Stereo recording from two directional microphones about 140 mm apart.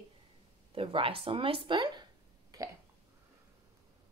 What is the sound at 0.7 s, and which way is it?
Speech, 40° right (ahead or behind).